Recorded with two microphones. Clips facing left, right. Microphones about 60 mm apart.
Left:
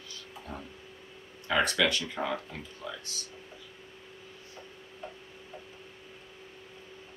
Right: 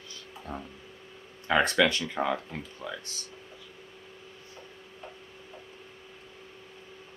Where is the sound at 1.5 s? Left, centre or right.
Right.